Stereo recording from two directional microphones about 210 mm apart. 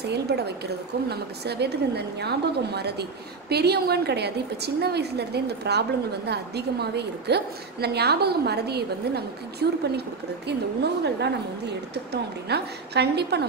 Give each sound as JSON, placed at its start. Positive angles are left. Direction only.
{"t": 0.0, "sound": "a woman's voice", "side_deg": -50}